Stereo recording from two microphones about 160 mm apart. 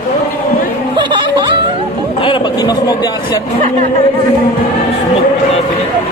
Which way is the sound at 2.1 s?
30° left (ahead or behind).